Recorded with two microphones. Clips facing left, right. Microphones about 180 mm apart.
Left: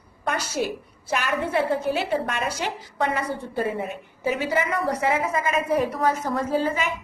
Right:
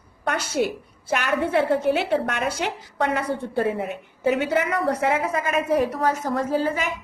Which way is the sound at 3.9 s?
65° right (ahead or behind).